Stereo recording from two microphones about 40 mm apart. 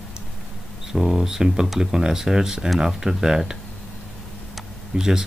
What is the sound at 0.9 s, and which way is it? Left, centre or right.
Speech, centre.